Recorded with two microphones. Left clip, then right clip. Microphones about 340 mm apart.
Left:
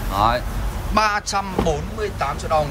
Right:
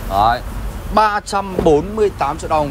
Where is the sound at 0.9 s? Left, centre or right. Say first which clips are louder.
Right 4 dB; centre.